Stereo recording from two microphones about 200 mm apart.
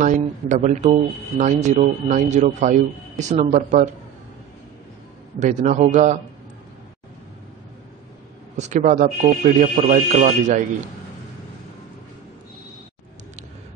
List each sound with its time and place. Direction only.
0.0 s a man's voice: 40° right (ahead or behind)
5.4 s a man's voice: 35° right (ahead or behind)
8.5 s a man's voice: 35° right (ahead or behind)